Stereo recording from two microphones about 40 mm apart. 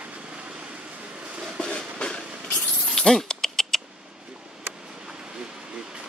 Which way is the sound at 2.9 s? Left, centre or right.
Centre.